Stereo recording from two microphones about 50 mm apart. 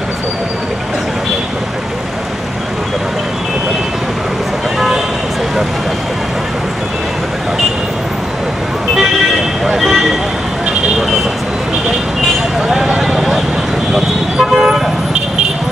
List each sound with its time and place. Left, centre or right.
4.7 s vehicle: centre
9.8 s vehicle: centre
12.6 s a sound: centre
13.9 s toot: centre